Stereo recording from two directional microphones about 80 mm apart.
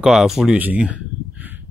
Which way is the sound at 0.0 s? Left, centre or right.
Centre.